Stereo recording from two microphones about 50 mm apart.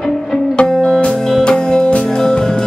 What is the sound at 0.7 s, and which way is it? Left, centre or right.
Music, centre.